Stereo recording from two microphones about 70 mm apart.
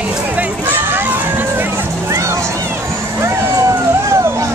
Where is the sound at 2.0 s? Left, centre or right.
Right.